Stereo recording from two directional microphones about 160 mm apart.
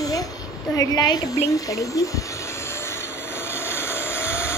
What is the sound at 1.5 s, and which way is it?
Train, 20° left (ahead or behind).